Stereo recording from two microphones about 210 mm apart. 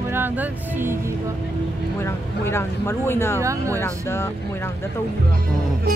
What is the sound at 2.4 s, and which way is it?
Music, 10° left (ahead or behind).